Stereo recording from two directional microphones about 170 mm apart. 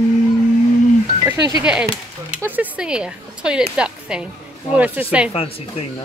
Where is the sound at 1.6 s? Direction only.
5° right (ahead or behind).